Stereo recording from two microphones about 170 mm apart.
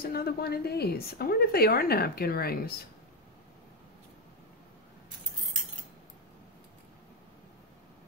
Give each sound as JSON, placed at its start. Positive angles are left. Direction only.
{"t": 0.0, "sound": "a woman's voice", "side_deg": 65}